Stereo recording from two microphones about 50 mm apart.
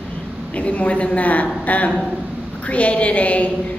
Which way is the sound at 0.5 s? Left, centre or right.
Left.